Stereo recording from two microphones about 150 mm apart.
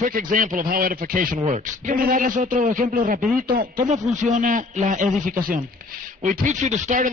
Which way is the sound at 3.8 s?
55° right (ahead or behind).